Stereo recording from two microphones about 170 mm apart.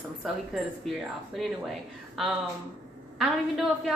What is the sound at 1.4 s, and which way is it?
Speech, centre (ahead or behind).